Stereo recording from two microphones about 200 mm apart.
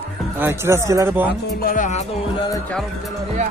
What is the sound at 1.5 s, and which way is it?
Music, 45° left (ahead or behind).